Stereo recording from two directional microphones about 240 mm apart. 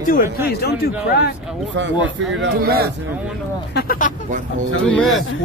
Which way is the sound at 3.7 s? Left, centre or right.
Left.